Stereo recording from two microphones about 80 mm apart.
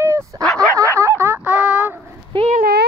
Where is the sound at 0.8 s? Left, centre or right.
Right; by 1.9 s centre.